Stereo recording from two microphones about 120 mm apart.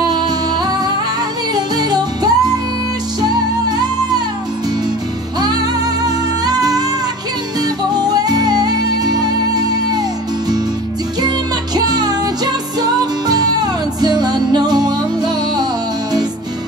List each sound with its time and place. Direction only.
1.5 s music: 35° right (ahead or behind)
6.0 s music: 35° right (ahead or behind)
7.9 s music: 35° right (ahead or behind)
11.2 s music: 35° right (ahead or behind)